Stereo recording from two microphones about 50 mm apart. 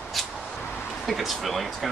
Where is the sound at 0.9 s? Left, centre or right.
Centre.